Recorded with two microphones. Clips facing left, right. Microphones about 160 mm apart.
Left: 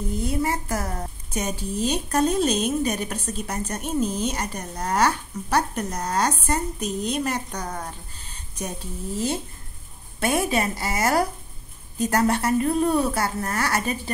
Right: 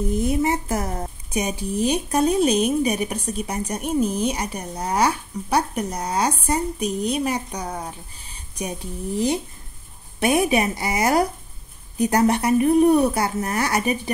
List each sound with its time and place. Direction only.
0.1 s a woman's voice: 20° right (ahead or behind)